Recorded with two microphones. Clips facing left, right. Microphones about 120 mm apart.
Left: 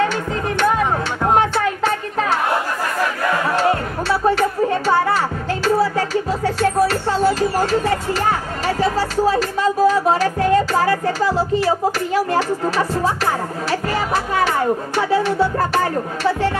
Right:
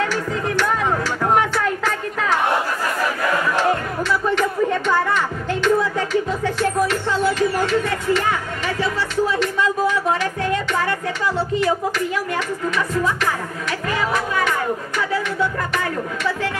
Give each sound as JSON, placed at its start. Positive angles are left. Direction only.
{"t": 0.0, "sound": "music", "side_deg": 20}
{"t": 4.1, "sound": "music", "side_deg": 35}